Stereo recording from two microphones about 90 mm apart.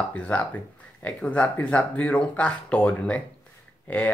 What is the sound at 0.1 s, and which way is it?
Speech, 15° left (ahead or behind).